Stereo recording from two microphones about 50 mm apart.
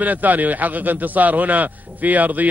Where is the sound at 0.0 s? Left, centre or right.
Right.